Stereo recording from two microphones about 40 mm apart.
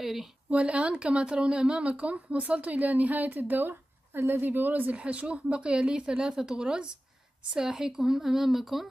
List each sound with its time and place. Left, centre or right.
0.0 s speech: centre
0.5 s speech: right
3.6 s a sound: right
4.4 s a woman's voice: right
4.9 s speech: right; by 8.8 s centre